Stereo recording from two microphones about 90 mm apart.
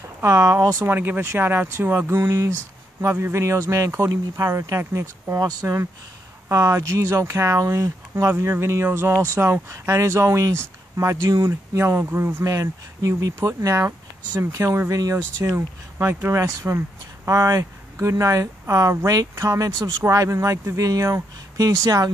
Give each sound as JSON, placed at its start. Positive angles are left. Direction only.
{"t": 0.5, "sound": "speech", "side_deg": -35}
{"t": 0.8, "sound": "speech", "side_deg": -20}
{"t": 15.5, "sound": "speech", "side_deg": -25}